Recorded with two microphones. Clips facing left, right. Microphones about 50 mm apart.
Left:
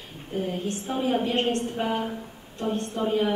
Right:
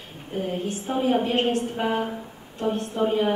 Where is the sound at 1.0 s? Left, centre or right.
Right.